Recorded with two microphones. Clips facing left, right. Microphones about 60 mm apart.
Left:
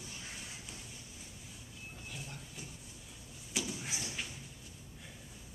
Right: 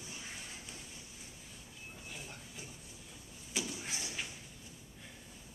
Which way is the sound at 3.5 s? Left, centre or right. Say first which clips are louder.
Left 1 dB; centre.